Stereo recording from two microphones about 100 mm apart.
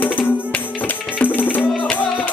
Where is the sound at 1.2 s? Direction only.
20° left (ahead or behind).